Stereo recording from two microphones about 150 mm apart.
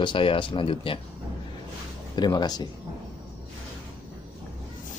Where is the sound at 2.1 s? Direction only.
30° left (ahead or behind).